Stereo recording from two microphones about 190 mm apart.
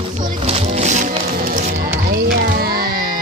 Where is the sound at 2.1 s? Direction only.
55° right (ahead or behind).